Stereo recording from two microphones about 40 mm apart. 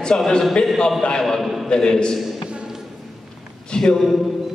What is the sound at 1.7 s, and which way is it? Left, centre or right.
Speech, left.